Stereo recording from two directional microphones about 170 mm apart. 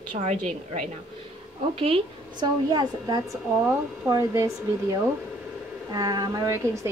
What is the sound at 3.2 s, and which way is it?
Speech, 5° right (ahead or behind).